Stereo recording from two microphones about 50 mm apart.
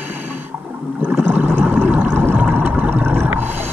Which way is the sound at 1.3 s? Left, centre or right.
Right.